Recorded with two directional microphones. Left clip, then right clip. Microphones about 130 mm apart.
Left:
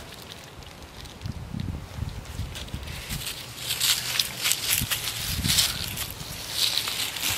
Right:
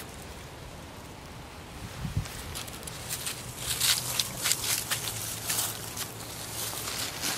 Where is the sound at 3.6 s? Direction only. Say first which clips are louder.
Left 3 dB; 10° right (ahead or behind).